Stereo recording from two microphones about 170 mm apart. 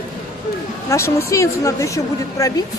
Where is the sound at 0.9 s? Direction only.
15° left (ahead or behind).